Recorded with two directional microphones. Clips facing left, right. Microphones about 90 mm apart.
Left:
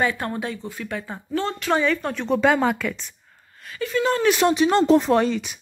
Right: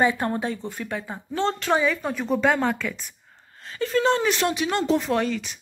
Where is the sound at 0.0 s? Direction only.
20° right (ahead or behind).